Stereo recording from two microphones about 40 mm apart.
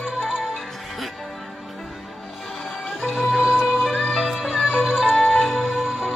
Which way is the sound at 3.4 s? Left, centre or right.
Centre.